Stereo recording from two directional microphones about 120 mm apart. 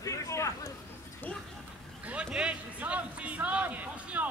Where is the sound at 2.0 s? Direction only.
10° right (ahead or behind).